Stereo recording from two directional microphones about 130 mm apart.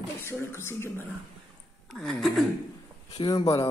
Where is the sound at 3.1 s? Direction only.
35° left (ahead or behind).